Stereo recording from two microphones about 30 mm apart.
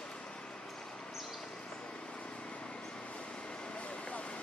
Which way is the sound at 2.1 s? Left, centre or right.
Left.